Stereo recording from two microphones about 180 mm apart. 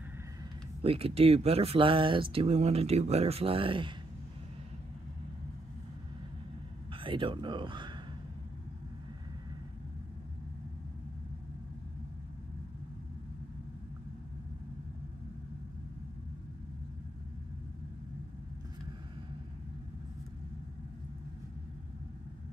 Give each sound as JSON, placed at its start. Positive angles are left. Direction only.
{"t": 0.8, "sound": "speech", "side_deg": -35}
{"t": 6.9, "sound": "speech", "side_deg": -30}